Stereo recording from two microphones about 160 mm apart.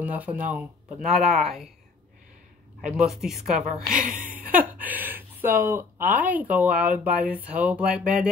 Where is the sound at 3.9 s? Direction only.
55° right (ahead or behind).